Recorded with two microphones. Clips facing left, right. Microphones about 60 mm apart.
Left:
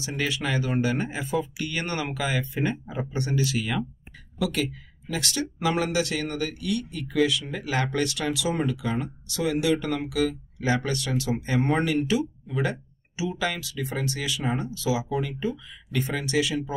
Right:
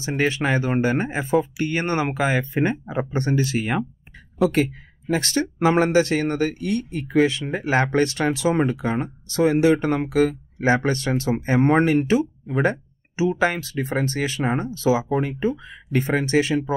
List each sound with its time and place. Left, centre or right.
0.0 s speech: right